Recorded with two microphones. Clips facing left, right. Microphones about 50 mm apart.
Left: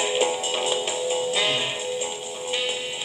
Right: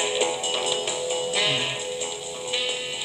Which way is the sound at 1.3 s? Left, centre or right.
Left.